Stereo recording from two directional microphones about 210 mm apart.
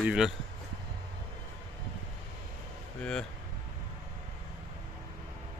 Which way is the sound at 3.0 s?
5° left (ahead or behind).